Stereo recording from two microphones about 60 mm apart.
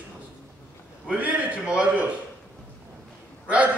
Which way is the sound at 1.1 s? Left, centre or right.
Right.